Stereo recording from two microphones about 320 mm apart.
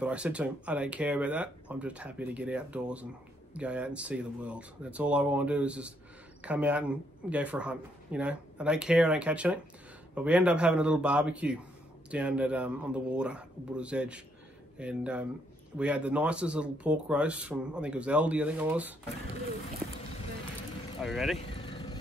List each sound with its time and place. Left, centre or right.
0.0 s speech: centre
21.0 s speech: centre
21.4 s vehicle: centre